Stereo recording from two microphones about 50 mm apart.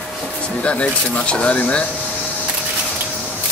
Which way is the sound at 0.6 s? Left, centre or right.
Left.